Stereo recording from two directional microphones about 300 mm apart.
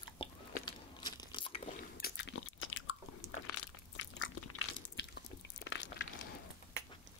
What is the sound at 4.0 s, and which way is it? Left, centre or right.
Biting, left.